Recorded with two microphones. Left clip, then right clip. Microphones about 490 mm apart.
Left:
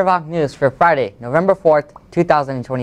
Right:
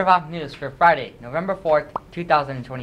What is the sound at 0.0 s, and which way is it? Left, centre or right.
Speech, left.